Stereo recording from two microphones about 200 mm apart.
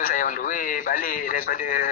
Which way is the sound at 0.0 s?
45° left (ahead or behind).